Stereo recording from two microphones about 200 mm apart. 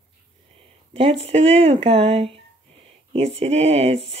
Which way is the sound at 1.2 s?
30° right (ahead or behind).